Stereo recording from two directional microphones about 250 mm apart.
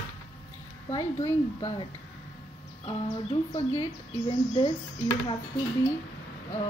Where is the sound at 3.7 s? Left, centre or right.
Centre.